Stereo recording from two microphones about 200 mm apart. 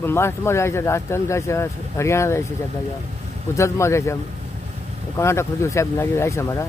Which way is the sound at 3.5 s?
15° left (ahead or behind).